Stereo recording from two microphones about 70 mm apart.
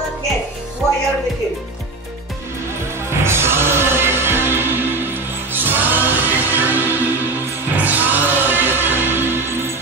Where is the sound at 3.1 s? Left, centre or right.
Right.